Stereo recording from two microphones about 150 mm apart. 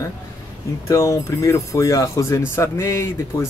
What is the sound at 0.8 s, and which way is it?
Speech, 20° left (ahead or behind).